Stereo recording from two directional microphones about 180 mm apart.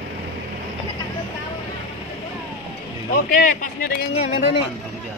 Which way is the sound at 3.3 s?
50° left (ahead or behind).